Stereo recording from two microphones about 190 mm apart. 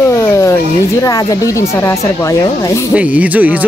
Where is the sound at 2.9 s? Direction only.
5° right (ahead or behind).